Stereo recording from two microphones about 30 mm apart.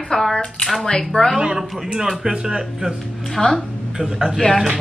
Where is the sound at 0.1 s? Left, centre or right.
Centre.